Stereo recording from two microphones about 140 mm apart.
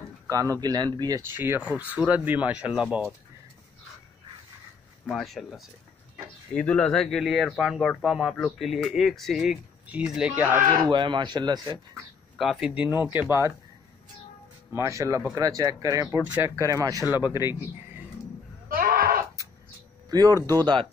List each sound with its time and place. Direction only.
0.3 s speech: 25° right (ahead or behind)
1.3 s speech: 15° right (ahead or behind)
5.0 s speech: centre (ahead or behind)
10.7 s speech: 35° right (ahead or behind)
12.4 s speech: centre (ahead or behind)
14.8 s speech: 20° right (ahead or behind)
18.7 s sheep: 90° right
20.1 s speech: 25° right (ahead or behind)